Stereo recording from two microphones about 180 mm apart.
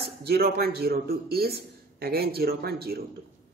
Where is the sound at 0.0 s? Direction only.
60° right (ahead or behind).